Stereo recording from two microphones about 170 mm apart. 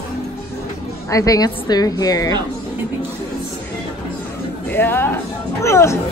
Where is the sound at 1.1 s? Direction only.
20° left (ahead or behind).